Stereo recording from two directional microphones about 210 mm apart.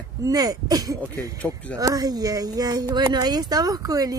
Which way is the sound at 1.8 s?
15° right (ahead or behind).